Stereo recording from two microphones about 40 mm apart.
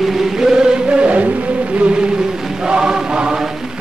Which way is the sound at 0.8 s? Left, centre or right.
Right.